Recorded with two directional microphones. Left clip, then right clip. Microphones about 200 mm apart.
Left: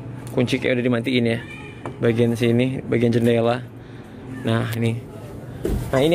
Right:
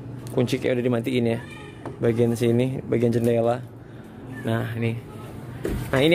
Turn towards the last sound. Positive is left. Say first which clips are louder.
# left 1 dB
turn(degrees=-15)  # may be behind; listen again after turning